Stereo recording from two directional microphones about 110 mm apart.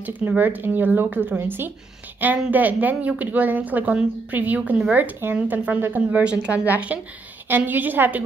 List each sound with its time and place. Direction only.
0.0 s speech: 15° right (ahead or behind)